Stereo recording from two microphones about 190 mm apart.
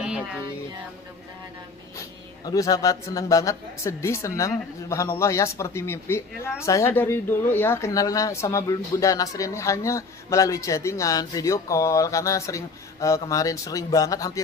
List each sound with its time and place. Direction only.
0.0 s music: 5° right (ahead or behind)
2.0 s speech: 20° left (ahead or behind)